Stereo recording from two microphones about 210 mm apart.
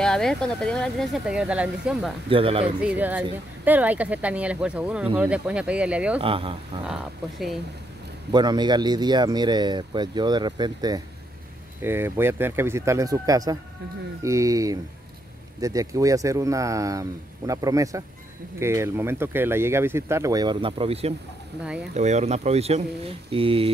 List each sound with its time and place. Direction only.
0.0 s speech: 5° left (ahead or behind)
2.2 s speech: 25° right (ahead or behind)
2.6 s speech: 5° right (ahead or behind)
6.1 s speech: 25° right (ahead or behind)
6.9 s speech: centre (ahead or behind)
8.3 s speech: 20° right (ahead or behind)